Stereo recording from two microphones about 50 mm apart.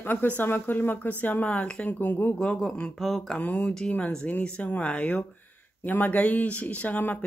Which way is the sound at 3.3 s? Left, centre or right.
Left.